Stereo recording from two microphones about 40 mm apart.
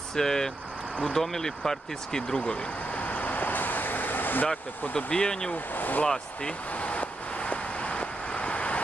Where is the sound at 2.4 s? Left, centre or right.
Left.